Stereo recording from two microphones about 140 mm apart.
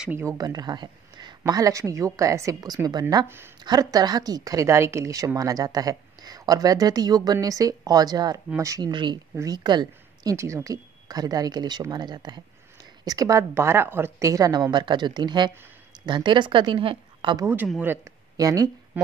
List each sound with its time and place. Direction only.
0.1 s a woman's voice: 20° right (ahead or behind)
3.3 s speech: 15° right (ahead or behind)
3.6 s a woman's voice: 30° right (ahead or behind)
18.4 s speech: 25° right (ahead or behind)